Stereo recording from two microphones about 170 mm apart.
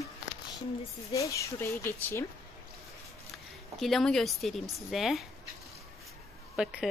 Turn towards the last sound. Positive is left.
turn(degrees=-5)  # may be behind; listen again after turning